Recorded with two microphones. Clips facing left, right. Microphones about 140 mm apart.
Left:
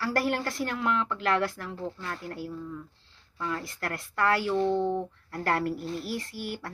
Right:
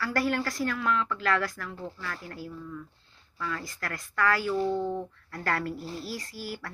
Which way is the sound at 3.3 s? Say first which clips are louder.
Left 2 dB; 30° left (ahead or behind).